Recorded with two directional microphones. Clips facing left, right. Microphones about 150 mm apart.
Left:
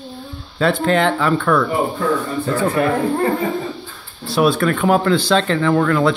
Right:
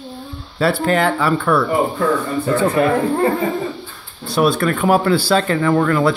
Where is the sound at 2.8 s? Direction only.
25° right (ahead or behind).